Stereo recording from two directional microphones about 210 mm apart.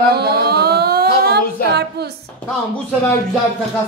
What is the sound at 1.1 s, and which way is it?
Female singing, 50° right (ahead or behind).